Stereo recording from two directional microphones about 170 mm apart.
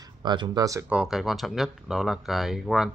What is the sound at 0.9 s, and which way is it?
Speech, 5° right (ahead or behind).